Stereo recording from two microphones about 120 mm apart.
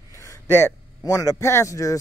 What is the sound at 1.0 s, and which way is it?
Speech, 30° left (ahead or behind).